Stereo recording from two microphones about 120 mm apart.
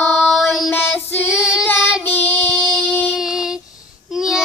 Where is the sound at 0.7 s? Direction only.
15° left (ahead or behind).